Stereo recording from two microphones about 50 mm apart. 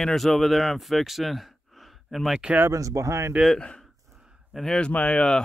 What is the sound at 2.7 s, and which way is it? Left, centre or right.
Speech, right.